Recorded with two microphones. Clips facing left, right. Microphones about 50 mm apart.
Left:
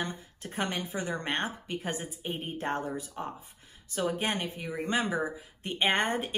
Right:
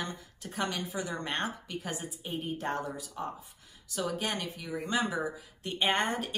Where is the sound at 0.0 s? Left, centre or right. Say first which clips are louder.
Left 2 dB; left.